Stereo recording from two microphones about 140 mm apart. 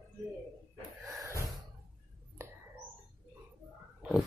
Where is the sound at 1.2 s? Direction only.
25° right (ahead or behind).